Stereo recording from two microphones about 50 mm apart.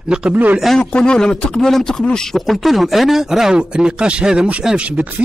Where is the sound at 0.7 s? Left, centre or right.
Centre.